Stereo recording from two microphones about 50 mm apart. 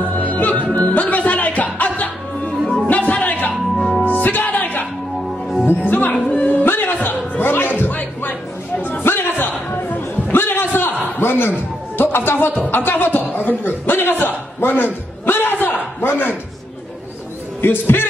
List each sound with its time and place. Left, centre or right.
0.3 s music: left
2.6 s music: centre
2.9 s music: left
3.7 s music: centre
4.0 s music: left
6.3 s a sound: left
7.8 s music: left
9.0 s a sound: left
12.0 s music: left
14.6 s a man's voice: left
15.2 s a sound: left
17.6 s a man's voice: left